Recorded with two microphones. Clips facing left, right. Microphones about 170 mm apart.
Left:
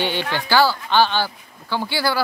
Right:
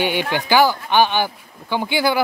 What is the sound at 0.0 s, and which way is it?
Speech, 15° right (ahead or behind).